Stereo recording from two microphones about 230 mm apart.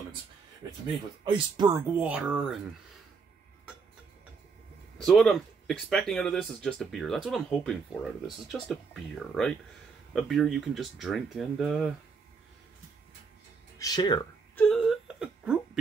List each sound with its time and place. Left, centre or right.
1.2 s speech: centre
4.9 s speech: centre
13.7 s speech: centre
14.5 s whimper: centre